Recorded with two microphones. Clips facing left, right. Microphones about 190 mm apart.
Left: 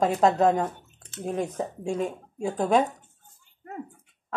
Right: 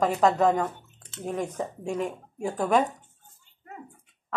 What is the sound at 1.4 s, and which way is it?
Speech, 10° left (ahead or behind).